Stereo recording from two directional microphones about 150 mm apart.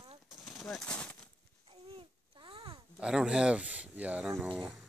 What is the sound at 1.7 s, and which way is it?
Babbling, 35° right (ahead or behind).